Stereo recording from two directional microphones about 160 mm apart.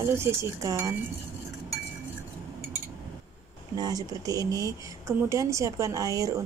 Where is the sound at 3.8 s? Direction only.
25° right (ahead or behind).